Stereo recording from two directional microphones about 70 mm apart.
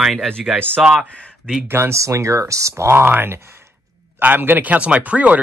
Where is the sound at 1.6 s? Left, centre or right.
Right.